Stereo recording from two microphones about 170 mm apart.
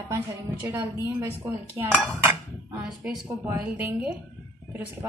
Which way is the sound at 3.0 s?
Centre (ahead or behind).